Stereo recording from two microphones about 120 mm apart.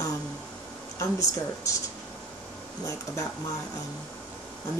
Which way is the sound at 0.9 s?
30° left (ahead or behind).